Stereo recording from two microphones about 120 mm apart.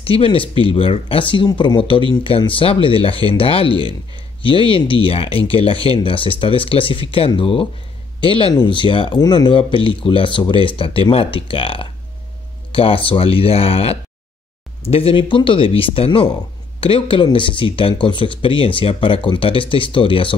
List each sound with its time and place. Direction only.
0.0 s speech: 50° left (ahead or behind)
3.7 s speech: 40° right (ahead or behind)
4.4 s speech: 45° left (ahead or behind)